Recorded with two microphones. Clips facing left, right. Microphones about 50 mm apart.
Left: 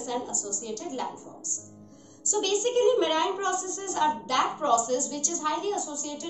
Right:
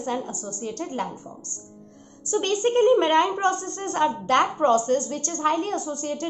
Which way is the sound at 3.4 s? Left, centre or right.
Right.